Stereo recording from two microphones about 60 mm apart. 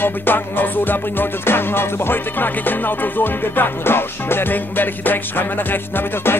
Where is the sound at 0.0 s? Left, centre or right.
Left.